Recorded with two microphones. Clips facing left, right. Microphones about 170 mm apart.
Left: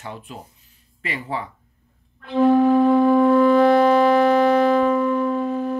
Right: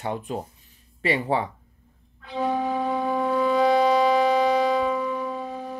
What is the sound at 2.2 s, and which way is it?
Music, 60° left (ahead or behind).